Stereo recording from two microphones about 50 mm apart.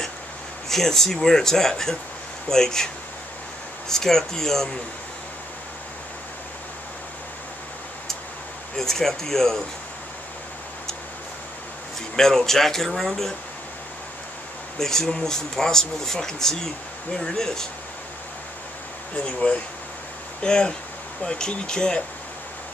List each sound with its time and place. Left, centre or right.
0.7 s speech: centre
3.9 s speech: centre
8.7 s speech: centre
12.2 s speech: centre
14.8 s speech: centre
19.1 s speech: left